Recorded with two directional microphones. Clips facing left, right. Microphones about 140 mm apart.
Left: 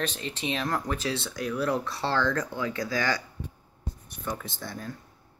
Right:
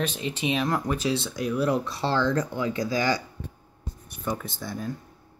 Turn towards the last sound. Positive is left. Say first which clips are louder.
# right 4 dB
turn(degrees=-10)  # may be behind; listen again after turning